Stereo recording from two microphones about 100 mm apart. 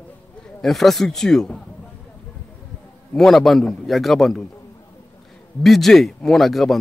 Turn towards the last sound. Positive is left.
turn(degrees=0)  # may be behind; listen again after turning